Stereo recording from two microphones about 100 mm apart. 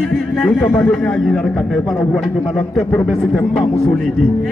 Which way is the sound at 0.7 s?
20° left (ahead or behind).